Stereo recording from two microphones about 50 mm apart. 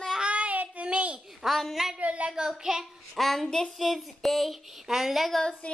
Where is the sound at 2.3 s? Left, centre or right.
Centre.